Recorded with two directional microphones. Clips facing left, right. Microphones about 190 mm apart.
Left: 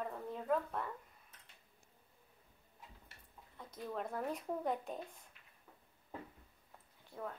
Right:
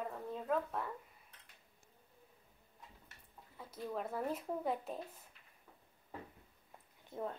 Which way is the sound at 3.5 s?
5° right (ahead or behind).